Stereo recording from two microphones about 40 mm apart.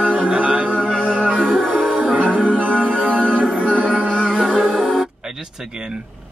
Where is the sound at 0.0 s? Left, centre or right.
Right.